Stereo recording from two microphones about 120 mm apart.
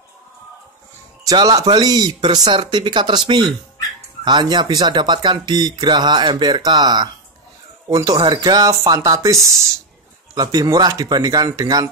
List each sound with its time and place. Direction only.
1.2 s speech: 30° right (ahead or behind)